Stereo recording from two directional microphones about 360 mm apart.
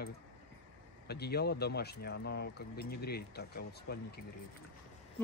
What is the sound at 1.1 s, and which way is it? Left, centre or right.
Speech, left.